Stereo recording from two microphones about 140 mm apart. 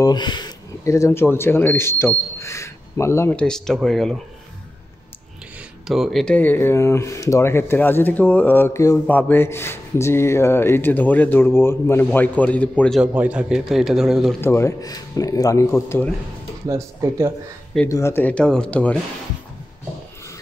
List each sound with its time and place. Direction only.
0.0 s speech: 30° left (ahead or behind)
3.3 s a man's voice: 5° left (ahead or behind)
5.9 s a man's voice: centre (ahead or behind)
13.0 s a man's voice: 10° right (ahead or behind)
14.4 s a man's voice: 20° left (ahead or behind)
16.6 s speech: 20° right (ahead or behind)
17.8 s a man's voice: 20° left (ahead or behind)